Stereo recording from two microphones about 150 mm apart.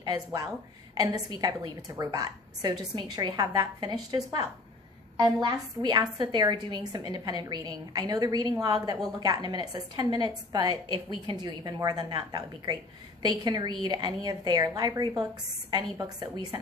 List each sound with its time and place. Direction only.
0.0 s a woman's voice: 25° right (ahead or behind)